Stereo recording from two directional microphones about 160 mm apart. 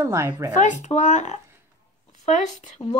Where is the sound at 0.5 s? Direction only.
50° left (ahead or behind).